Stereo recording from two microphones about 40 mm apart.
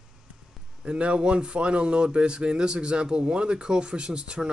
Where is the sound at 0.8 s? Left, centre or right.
Right.